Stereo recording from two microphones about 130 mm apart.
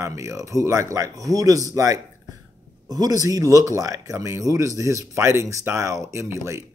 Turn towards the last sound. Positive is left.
turn(degrees=-20)  # may be behind; listen again after turning